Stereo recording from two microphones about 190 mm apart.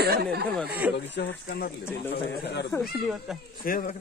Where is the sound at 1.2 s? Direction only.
60° left (ahead or behind).